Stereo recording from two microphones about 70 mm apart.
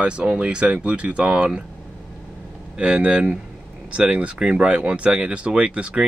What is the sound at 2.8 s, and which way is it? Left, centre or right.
Speech, centre.